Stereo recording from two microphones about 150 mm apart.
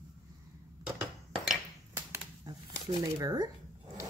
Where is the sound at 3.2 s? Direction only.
25° right (ahead or behind).